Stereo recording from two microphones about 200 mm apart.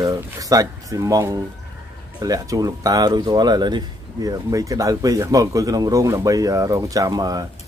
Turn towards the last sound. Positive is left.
turn(degrees=-20)  # may be behind; listen again after turning